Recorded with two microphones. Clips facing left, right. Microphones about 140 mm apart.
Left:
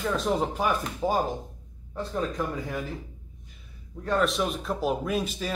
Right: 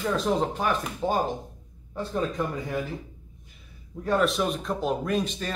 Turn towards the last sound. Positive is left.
turn(degrees=5)  # may be behind; listen again after turning